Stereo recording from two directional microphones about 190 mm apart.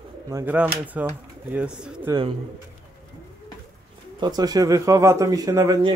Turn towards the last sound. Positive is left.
turn(degrees=-20)  # may be behind; listen again after turning